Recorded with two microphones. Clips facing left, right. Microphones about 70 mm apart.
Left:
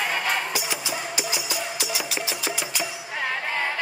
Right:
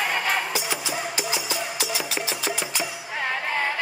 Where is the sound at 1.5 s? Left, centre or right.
Centre.